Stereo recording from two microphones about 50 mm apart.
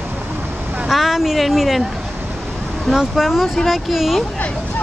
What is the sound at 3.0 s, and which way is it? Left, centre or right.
Speech, centre.